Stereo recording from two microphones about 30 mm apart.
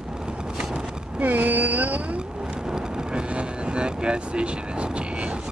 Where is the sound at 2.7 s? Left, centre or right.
Right.